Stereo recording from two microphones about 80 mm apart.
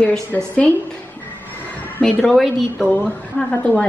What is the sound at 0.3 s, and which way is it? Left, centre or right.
Speech, centre.